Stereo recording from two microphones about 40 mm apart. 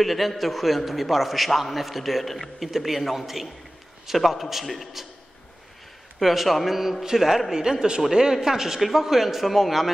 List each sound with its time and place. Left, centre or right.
0.0 s a man's voice: centre
6.1 s a man's voice: centre
7.5 s a man's voice: centre